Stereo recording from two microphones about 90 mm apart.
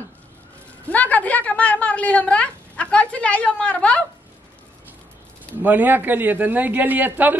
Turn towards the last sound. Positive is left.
turn(degrees=-20)  # may be behind; listen again after turning